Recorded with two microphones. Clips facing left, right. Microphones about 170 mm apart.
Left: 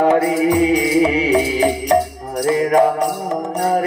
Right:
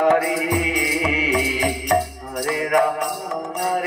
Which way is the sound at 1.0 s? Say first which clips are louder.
Left 6 dB; 30° left (ahead or behind).